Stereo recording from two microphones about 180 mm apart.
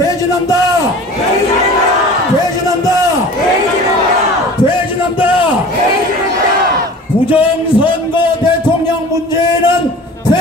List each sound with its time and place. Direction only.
7.2 s a man's voice: 30° left (ahead or behind)